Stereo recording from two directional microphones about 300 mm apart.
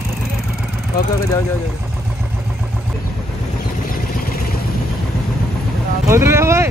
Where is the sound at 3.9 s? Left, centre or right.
Left.